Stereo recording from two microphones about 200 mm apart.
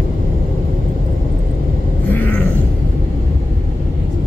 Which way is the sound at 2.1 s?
10° left (ahead or behind).